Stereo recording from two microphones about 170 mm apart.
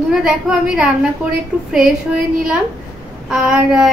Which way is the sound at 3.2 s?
Centre (ahead or behind).